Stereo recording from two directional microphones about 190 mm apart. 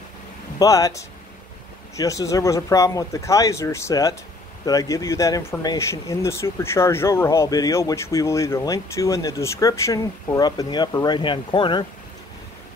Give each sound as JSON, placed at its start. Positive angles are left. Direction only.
{"t": 0.6, "sound": "speech", "side_deg": 20}